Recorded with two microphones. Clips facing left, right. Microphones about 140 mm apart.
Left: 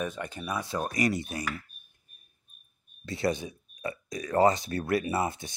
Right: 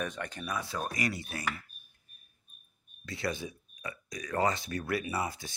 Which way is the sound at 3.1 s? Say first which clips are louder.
Left 6 dB; 25° left (ahead or behind).